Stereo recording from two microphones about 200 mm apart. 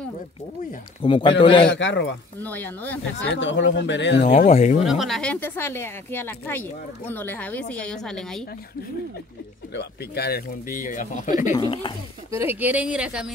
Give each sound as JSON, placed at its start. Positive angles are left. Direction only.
{"t": 1.0, "sound": "speech", "side_deg": 25}
{"t": 1.8, "sound": "speech", "side_deg": 65}
{"t": 2.4, "sound": "speech", "side_deg": 10}
{"t": 3.3, "sound": "speech", "side_deg": 65}
{"t": 4.3, "sound": "speech", "side_deg": 35}
{"t": 4.8, "sound": "speech", "side_deg": 0}
{"t": 9.8, "sound": "speech", "side_deg": 55}
{"t": 11.5, "sound": "speech", "side_deg": 25}
{"t": 12.3, "sound": "speech", "side_deg": -10}